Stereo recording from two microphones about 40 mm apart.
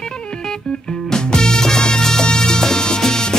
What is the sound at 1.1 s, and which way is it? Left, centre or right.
Music, centre.